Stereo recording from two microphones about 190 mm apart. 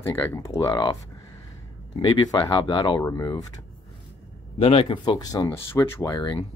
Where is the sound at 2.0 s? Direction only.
25° left (ahead or behind).